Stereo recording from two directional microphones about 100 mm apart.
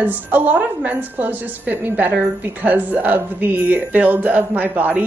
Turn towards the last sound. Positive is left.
turn(degrees=-20)  # may be behind; listen again after turning